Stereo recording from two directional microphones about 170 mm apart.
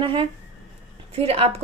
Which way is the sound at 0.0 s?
30° right (ahead or behind).